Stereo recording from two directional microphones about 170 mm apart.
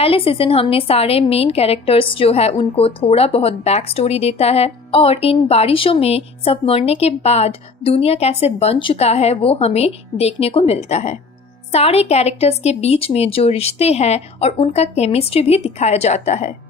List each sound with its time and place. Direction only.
0.0 s a woman's voice: 35° left (ahead or behind)